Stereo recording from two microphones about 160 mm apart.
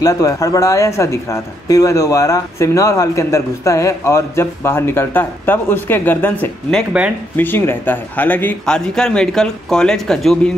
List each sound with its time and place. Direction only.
0.0 s speech: 20° left (ahead or behind); by 10.5 s 5° left (ahead or behind)